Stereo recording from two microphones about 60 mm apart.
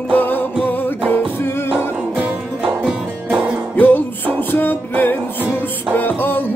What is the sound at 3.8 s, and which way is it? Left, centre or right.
Music, left.